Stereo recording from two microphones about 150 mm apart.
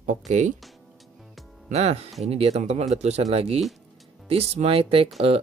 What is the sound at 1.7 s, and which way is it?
Speech, 45° right (ahead or behind).